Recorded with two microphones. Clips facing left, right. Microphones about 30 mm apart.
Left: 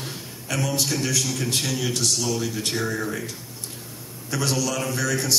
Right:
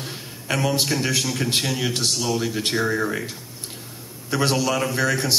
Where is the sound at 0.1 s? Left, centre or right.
Right.